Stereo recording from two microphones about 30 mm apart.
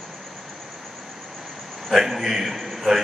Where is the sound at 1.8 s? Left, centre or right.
Centre.